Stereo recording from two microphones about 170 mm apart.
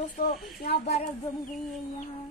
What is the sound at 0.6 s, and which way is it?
Speech, 65° left (ahead or behind).